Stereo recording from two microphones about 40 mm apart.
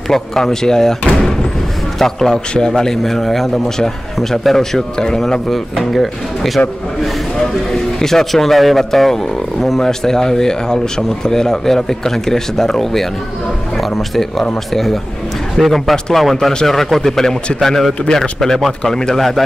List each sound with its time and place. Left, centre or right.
0.1 s a man's voice: centre
5.5 s speech: centre
7.7 s speech: centre
19.1 s speech: centre